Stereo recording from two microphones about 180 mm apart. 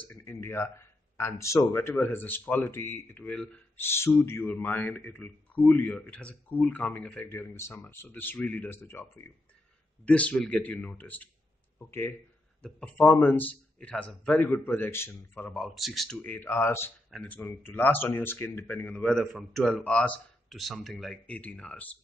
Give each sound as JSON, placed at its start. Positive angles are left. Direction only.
{"t": 0.0, "sound": "speech", "side_deg": 10}